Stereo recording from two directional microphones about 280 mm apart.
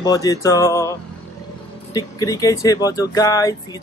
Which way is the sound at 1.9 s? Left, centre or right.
Centre.